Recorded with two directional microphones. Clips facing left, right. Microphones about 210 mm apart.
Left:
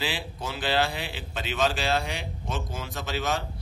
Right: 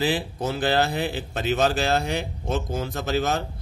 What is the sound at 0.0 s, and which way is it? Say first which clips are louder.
A man's voice: right 8 dB; 40° right (ahead or behind).